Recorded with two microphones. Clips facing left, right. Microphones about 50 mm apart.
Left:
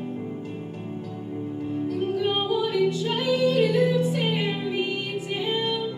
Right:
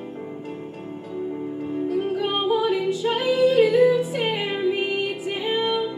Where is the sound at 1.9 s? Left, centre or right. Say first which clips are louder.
Right 1 dB; centre.